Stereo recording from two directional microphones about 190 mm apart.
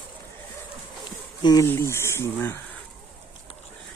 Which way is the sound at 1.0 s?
20° left (ahead or behind).